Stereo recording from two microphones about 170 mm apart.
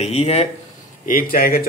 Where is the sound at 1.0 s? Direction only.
55° left (ahead or behind).